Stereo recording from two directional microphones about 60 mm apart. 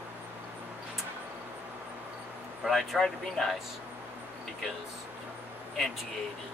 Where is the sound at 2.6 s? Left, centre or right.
Centre.